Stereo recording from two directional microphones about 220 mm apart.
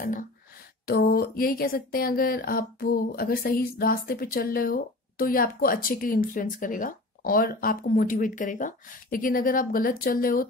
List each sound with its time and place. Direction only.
0.8 s speech: 45° left (ahead or behind)